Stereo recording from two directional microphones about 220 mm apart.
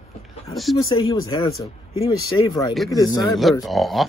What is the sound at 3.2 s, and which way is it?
Speech, centre (ahead or behind).